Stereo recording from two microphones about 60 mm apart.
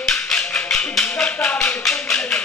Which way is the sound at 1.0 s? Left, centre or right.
Centre.